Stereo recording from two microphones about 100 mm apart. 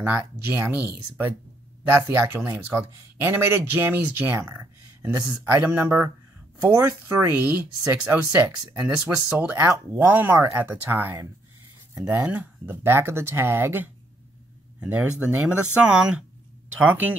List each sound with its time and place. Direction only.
0.5 s speech: 20° right (ahead or behind)
14.8 s speech: 10° right (ahead or behind)